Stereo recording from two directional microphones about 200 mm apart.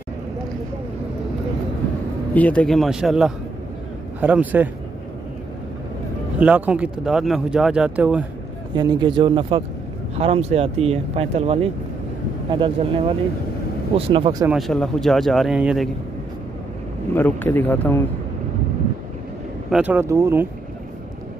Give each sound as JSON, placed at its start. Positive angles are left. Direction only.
{"t": 2.3, "sound": "speech", "side_deg": 5}
{"t": 6.4, "sound": "speech", "side_deg": -5}
{"t": 8.7, "sound": "speech", "side_deg": -20}
{"t": 14.5, "sound": "speech", "side_deg": 0}
{"t": 17.1, "sound": "speech", "side_deg": 10}
{"t": 19.7, "sound": "speech", "side_deg": -5}